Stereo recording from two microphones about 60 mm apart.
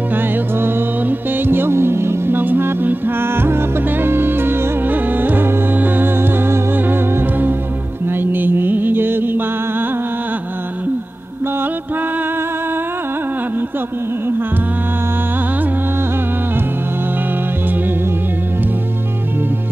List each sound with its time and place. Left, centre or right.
0.1 s music: right